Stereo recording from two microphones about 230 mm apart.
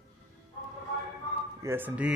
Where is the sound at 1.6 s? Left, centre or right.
Centre.